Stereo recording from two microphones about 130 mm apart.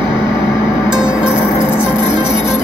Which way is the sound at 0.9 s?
20° left (ahead or behind).